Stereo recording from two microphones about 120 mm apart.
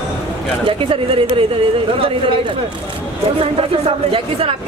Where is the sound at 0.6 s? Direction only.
50° right (ahead or behind).